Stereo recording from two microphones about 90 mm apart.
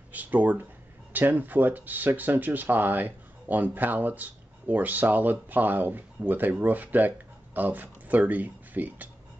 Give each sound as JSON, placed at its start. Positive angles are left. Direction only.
{"t": 0.1, "sound": "speech", "side_deg": -20}